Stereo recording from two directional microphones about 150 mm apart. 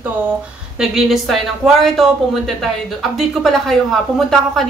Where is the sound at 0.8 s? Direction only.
Centre (ahead or behind).